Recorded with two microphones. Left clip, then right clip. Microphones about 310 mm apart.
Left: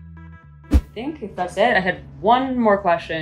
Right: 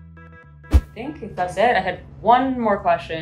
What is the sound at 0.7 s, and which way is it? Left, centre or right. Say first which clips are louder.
Music: left 4 dB; centre.